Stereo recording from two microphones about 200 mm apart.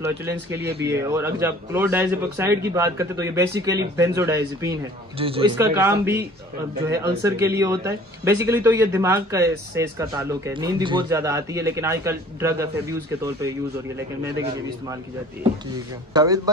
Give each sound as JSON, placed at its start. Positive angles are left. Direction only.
{"t": 0.0, "sound": "speech", "side_deg": -10}
{"t": 5.2, "sound": "a man's voice", "side_deg": -30}
{"t": 5.6, "sound": "speech", "side_deg": -15}
{"t": 16.1, "sound": "a man's voice", "side_deg": -20}